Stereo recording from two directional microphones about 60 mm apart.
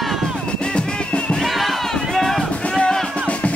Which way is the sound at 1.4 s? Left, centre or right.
Centre.